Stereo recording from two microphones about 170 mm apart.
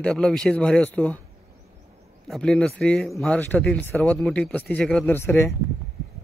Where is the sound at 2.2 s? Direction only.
5° left (ahead or behind).